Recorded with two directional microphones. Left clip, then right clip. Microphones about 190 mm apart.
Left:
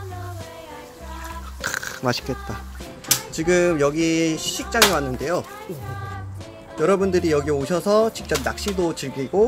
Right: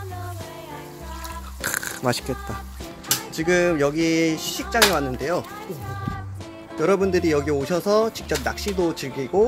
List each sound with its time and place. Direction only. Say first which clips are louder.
1.6 s music: even; 10° right (ahead or behind)
3.3 s speech: left 1 dB; 15° right (ahead or behind)
6.8 s speech: left 1 dB; 15° right (ahead or behind)